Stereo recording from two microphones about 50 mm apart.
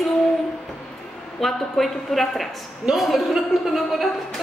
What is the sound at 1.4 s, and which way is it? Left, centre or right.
A woman's voice, centre.